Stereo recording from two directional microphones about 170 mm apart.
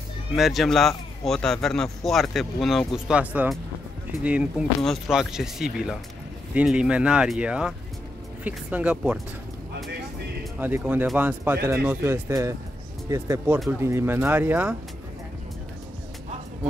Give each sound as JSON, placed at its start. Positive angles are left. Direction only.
{"t": 0.4, "sound": "a man's voice", "side_deg": 0}
{"t": 10.6, "sound": "speech", "side_deg": -10}